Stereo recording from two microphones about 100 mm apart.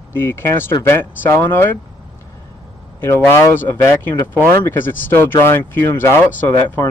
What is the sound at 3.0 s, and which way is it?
Speech, 25° left (ahead or behind).